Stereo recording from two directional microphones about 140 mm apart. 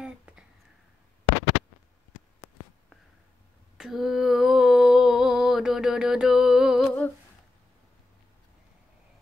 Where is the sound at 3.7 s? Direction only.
5° right (ahead or behind).